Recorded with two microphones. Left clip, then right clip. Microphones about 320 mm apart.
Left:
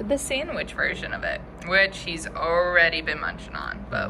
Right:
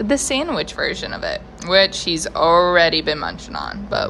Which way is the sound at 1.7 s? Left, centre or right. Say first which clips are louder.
Right 6 dB; centre.